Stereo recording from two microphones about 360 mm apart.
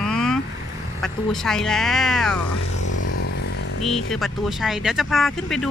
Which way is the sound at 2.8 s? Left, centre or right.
Left.